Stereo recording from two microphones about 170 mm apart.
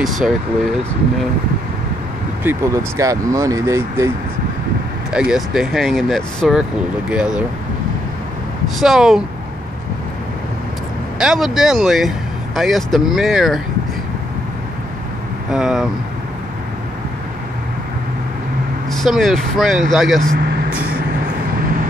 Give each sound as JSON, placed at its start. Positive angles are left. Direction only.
{"t": 2.4, "sound": "speech", "side_deg": -20}
{"t": 5.1, "sound": "speech", "side_deg": -5}
{"t": 8.7, "sound": "speech", "side_deg": 0}
{"t": 11.1, "sound": "speech", "side_deg": 0}
{"t": 15.5, "sound": "speech", "side_deg": 0}
{"t": 18.9, "sound": "speech", "side_deg": 0}